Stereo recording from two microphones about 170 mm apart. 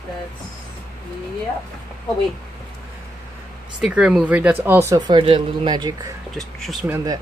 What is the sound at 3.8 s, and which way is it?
Speech, 5° right (ahead or behind).